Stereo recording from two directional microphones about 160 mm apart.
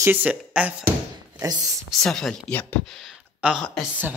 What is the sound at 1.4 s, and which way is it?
Speech, 20° right (ahead or behind).